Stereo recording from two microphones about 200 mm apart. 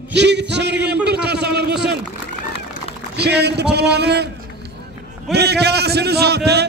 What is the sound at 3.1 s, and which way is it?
A man's voice, 55° right (ahead or behind).